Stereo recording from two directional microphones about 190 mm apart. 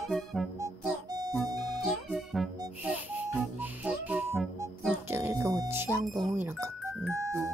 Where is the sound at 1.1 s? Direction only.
20° right (ahead or behind).